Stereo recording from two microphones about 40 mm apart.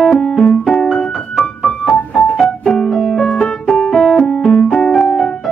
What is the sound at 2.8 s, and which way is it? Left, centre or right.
Music, centre.